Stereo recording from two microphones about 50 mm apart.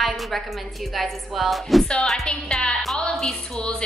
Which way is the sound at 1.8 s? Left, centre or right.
Centre.